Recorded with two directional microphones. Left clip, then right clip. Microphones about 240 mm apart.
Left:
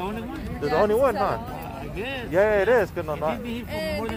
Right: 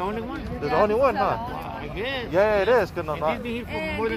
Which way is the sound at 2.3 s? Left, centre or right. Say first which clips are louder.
Even; centre.